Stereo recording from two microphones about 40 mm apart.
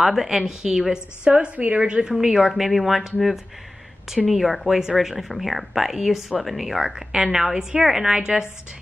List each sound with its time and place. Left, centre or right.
0.0 s a woman's voice: centre
1.2 s a woman's voice: right
2.1 s a woman's voice: centre